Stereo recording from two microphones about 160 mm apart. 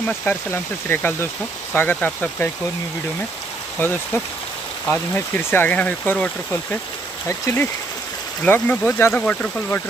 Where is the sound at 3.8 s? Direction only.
15° left (ahead or behind).